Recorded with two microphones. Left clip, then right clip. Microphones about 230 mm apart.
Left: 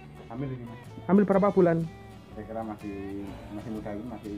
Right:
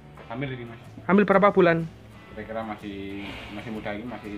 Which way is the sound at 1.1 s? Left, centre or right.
Centre.